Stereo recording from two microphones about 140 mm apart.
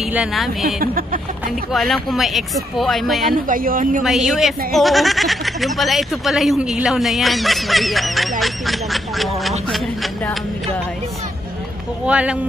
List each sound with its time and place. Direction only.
0.1 s speech: 5° right (ahead or behind)
0.7 s speech: 90° right
1.7 s speech: centre (ahead or behind)
3.4 s speech: 75° right (ahead or behind)
4.0 s speech: centre (ahead or behind)
12.1 s speech: 10° right (ahead or behind)